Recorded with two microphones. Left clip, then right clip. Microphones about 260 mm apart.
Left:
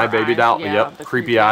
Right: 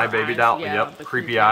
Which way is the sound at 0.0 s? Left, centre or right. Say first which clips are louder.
Left 3 dB; left.